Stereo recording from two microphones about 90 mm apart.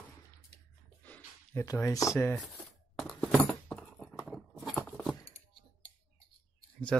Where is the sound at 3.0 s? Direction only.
15° left (ahead or behind).